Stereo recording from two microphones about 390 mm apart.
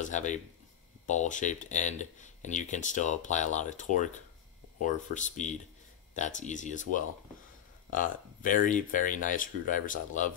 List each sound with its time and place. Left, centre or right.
0.0 s speech: centre